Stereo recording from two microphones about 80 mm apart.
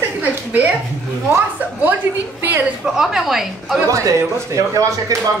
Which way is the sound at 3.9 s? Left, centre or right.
Right.